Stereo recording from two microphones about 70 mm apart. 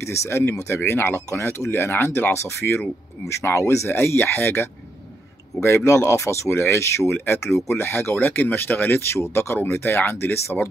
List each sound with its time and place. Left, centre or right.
0.0 s speech: left
0.7 s speech: left
7.7 s speech: left